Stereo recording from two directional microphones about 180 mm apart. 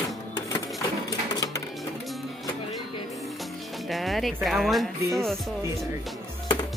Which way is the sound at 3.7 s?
Centre (ahead or behind).